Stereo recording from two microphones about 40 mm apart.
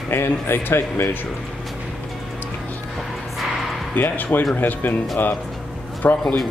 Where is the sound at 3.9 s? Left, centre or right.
Left.